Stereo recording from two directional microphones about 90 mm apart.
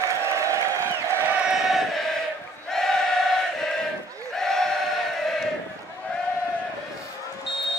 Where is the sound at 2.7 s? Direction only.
5° left (ahead or behind).